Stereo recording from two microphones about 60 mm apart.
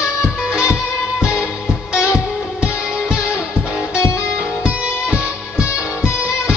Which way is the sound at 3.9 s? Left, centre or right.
Left.